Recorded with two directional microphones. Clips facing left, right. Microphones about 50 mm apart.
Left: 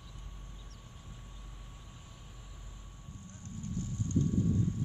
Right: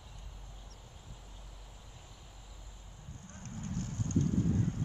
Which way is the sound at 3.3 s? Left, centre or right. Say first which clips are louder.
Even; right.